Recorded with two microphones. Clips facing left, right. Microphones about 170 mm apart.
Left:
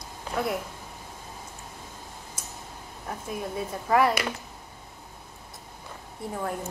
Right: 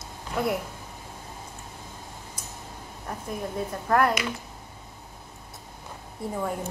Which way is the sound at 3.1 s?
5° left (ahead or behind).